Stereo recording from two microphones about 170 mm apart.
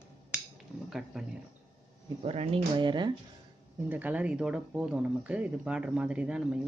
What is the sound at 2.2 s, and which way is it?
Speech, 40° right (ahead or behind).